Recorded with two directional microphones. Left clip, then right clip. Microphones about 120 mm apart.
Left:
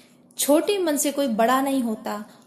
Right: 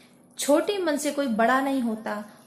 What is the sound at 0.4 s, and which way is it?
A woman's voice, 35° left (ahead or behind).